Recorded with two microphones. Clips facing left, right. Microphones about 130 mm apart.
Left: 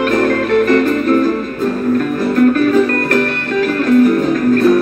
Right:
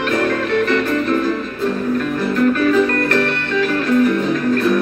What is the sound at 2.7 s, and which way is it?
Music, 45° left (ahead or behind).